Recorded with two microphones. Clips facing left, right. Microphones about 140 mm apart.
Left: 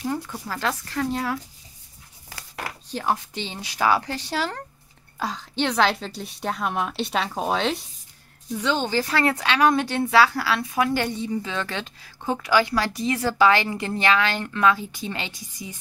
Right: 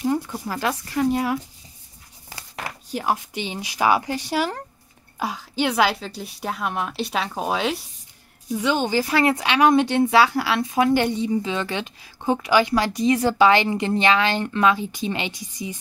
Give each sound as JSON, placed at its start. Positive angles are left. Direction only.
{"t": 0.0, "sound": "speech", "side_deg": -15}
{"t": 2.9, "sound": "a woman's voice", "side_deg": -10}